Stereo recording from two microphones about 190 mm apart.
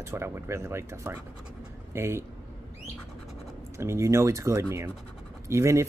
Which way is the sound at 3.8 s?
15° right (ahead or behind).